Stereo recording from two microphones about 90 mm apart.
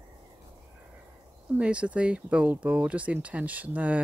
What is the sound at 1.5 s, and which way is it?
Speech, 15° right (ahead or behind).